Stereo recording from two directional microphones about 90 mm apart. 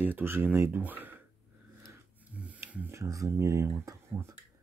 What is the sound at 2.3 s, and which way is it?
Snoring, 15° right (ahead or behind).